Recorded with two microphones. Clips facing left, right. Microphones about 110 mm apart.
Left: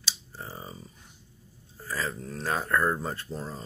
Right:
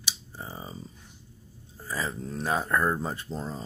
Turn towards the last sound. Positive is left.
turn(degrees=-20)  # may be behind; listen again after turning